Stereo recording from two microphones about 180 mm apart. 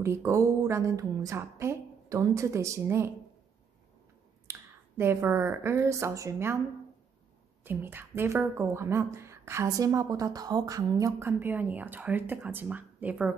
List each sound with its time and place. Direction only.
0.0 s a woman's voice: 15° right (ahead or behind)
4.5 s speech: 15° right (ahead or behind)
7.6 s a woman's voice: 10° right (ahead or behind)